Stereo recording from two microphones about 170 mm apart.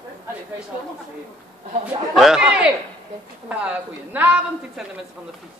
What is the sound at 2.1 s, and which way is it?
A man's voice, centre (ahead or behind).